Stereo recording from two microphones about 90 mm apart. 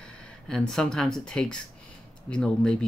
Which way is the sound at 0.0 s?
10° left (ahead or behind).